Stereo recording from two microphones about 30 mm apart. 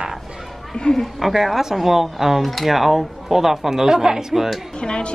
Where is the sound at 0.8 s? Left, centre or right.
Left.